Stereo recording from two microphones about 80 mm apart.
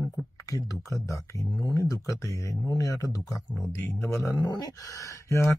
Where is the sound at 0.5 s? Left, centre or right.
Left.